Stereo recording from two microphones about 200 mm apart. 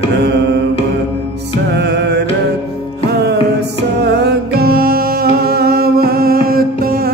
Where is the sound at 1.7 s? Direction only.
60° right (ahead or behind).